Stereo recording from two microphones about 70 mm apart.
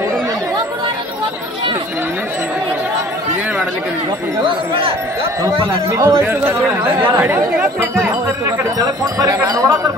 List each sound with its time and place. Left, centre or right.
5.9 s speech: right
8.7 s speech: right